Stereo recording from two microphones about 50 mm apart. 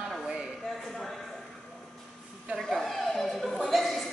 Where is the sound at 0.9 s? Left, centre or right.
Centre.